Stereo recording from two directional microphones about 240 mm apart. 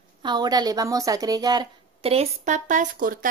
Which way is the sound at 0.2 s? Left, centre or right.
Centre.